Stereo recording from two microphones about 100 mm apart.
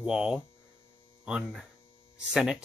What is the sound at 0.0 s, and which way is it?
Speech, 10° right (ahead or behind).